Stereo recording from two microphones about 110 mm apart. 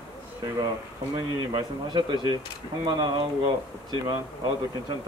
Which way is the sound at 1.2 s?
40° right (ahead or behind).